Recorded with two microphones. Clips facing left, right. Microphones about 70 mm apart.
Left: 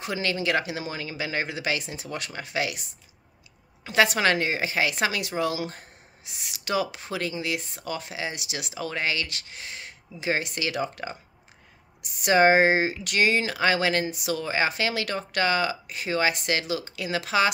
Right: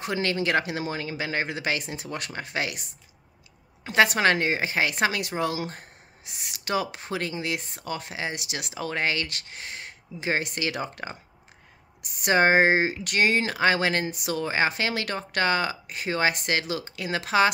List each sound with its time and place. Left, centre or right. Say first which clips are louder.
0.0 s speech: right 1 dB; right
3.8 s a woman's voice: right 1 dB; right